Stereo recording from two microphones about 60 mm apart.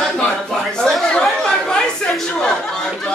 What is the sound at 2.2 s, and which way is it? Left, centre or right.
Chatter, centre.